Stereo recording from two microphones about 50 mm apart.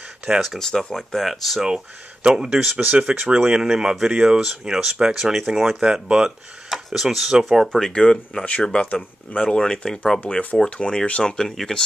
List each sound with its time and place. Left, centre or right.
0.3 s speech: centre
0.6 s speech: centre
2.2 s speech: centre
2.9 s speech: right
3.6 s speech: centre
7.7 s speech: centre
11.3 s speech: centre